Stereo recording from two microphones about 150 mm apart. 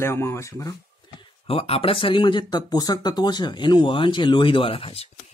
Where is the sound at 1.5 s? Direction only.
40° left (ahead or behind).